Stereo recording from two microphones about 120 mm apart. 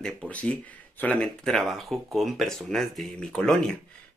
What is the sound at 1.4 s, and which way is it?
Speech, centre (ahead or behind).